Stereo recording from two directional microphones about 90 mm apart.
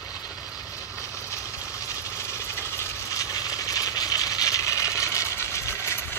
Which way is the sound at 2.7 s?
40° left (ahead or behind).